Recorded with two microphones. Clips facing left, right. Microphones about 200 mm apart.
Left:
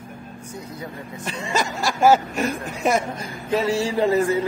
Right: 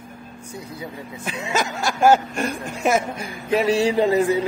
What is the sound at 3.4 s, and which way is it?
Mantra, 15° right (ahead or behind).